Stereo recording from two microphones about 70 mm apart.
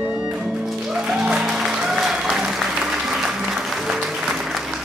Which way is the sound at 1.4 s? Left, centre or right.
Centre.